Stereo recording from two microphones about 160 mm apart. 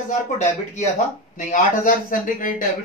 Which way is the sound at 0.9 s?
50° left (ahead or behind).